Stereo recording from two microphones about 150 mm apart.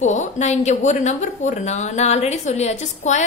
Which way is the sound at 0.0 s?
55° left (ahead or behind).